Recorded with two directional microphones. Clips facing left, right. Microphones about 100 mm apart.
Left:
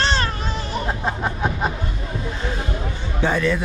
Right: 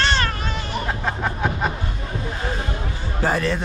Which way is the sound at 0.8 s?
10° left (ahead or behind).